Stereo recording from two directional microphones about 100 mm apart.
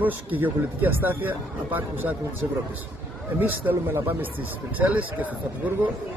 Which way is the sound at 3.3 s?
20° right (ahead or behind).